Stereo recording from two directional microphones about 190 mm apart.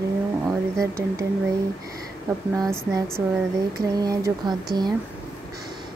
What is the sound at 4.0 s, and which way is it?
Speech, 20° right (ahead or behind).